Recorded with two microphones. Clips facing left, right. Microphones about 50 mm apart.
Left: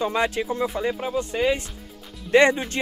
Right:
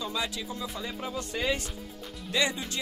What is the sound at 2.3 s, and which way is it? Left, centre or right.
Speech, left.